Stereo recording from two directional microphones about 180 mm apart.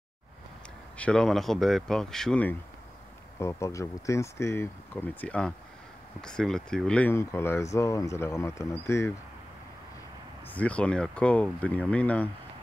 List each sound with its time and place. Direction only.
0.9 s speech: 5° left (ahead or behind)
3.3 s speech: 15° left (ahead or behind)
10.5 s speech: 10° left (ahead or behind)